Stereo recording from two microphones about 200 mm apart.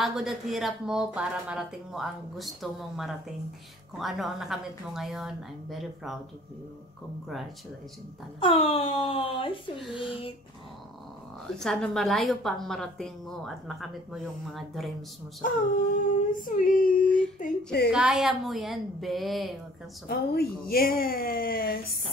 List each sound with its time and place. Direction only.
0.0 s a woman's voice: centre (ahead or behind)
8.4 s speech: 25° left (ahead or behind)
11.4 s a woman's voice: centre (ahead or behind)
15.4 s a sound: 40° left (ahead or behind)
17.9 s a woman's voice: 5° right (ahead or behind)
20.1 s a sound: 50° left (ahead or behind)